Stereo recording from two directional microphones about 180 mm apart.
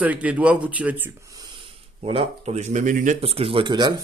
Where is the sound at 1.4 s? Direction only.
30° right (ahead or behind).